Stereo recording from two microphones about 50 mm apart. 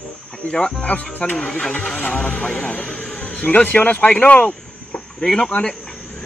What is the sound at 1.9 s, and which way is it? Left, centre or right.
Speech, left.